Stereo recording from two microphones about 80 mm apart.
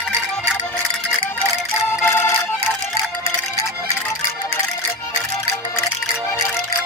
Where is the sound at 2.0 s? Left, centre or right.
Left.